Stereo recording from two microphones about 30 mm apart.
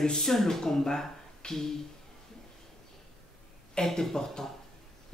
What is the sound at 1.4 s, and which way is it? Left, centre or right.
Speech, left.